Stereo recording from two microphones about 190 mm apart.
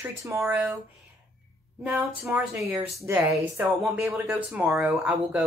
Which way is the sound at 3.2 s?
15° right (ahead or behind).